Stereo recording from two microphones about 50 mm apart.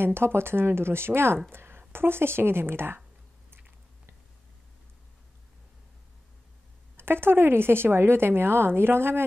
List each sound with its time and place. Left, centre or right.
0.0 s speech: right
7.0 s speech: right